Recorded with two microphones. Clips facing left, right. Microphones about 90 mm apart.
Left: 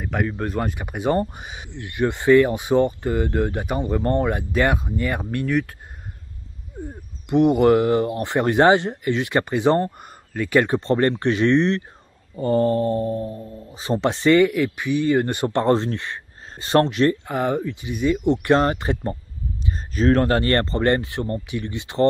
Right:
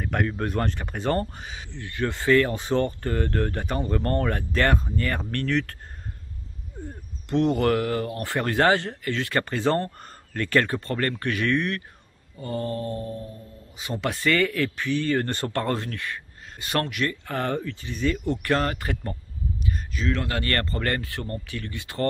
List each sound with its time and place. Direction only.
0.0 s speech: 5° left (ahead or behind)
6.8 s speech: 15° left (ahead or behind)
12.4 s speech: 35° left (ahead or behind)
17.3 s speech: 15° left (ahead or behind)
19.9 s speech: 45° left (ahead or behind); by 22.0 s 20° left (ahead or behind)